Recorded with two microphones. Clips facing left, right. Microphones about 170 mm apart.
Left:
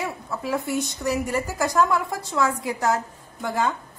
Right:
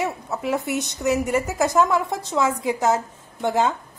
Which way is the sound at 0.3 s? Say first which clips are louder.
Left 1 dB; 20° right (ahead or behind).